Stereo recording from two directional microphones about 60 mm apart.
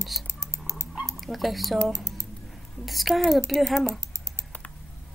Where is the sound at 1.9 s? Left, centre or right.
Right.